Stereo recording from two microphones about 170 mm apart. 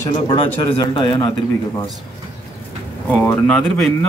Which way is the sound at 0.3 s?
30° left (ahead or behind).